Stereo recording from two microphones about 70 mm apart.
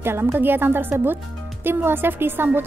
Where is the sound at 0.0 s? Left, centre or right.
Right.